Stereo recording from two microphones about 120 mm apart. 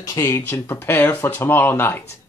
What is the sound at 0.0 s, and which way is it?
Speech, 25° left (ahead or behind).